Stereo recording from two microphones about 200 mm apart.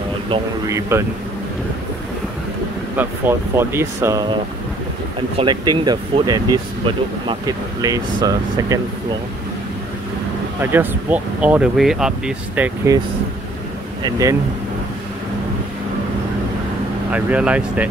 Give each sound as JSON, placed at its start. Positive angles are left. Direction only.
{"t": 0.3, "sound": "speech", "side_deg": -15}
{"t": 3.0, "sound": "speech", "side_deg": -10}
{"t": 5.4, "sound": "speech", "side_deg": -20}
{"t": 10.6, "sound": "speech", "side_deg": -10}
{"t": 14.0, "sound": "speech", "side_deg": -15}
{"t": 17.1, "sound": "speech", "side_deg": -5}